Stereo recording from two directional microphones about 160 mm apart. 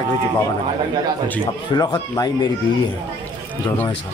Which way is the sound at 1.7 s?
25° left (ahead or behind).